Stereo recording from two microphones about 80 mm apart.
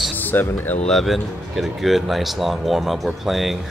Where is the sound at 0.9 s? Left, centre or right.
Centre.